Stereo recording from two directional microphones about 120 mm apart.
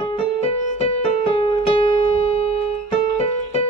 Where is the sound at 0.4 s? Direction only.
60° left (ahead or behind).